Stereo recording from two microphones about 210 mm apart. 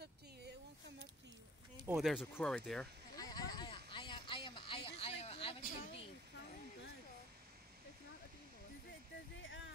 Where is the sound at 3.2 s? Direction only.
20° left (ahead or behind).